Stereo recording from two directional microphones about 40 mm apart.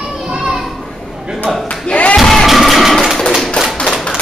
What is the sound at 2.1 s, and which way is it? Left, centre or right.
Music, centre.